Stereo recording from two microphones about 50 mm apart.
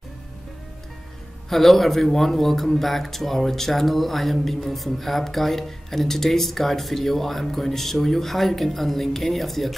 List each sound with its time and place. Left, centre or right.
1.5 s speech: centre